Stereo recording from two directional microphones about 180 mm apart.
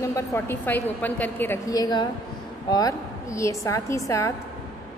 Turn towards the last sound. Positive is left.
turn(degrees=15)  # may be behind; listen again after turning